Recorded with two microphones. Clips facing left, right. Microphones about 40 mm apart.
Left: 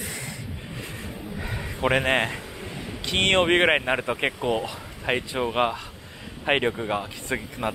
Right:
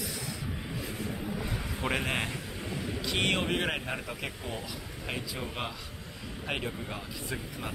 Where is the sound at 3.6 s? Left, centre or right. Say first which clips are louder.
Left 11 dB; left.